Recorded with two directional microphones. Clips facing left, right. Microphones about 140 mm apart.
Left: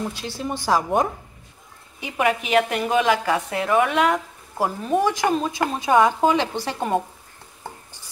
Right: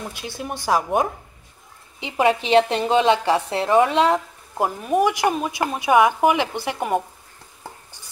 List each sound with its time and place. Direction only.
0.1 s speech: 15° right (ahead or behind)
2.0 s a woman's voice: 25° right (ahead or behind)
4.6 s speech: 15° right (ahead or behind)